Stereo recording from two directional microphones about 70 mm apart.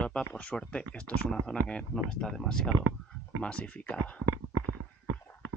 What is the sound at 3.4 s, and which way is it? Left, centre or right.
Speech, centre.